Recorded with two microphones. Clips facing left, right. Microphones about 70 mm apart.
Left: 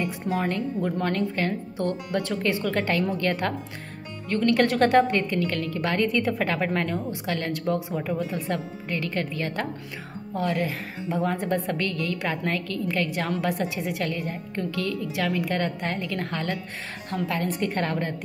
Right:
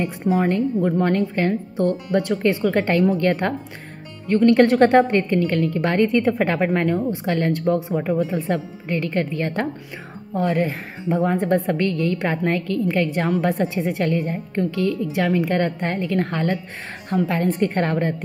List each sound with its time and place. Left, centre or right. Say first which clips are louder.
0.0 s a woman's voice: right 6 dB; right